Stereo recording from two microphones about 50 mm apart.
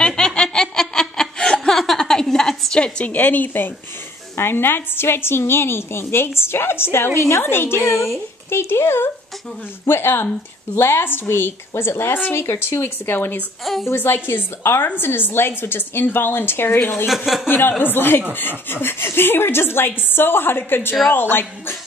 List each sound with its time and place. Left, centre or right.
0.0 s snicker: centre
1.8 s a sound: centre
3.1 s a woman's voice: left
4.4 s a woman's voice: left
17.1 s speech: centre
17.5 s a woman's voice: left